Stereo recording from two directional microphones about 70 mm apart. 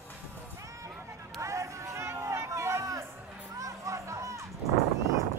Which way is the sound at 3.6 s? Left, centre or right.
Right.